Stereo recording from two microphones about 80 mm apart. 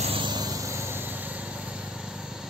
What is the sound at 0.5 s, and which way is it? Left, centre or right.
Vehicle, right.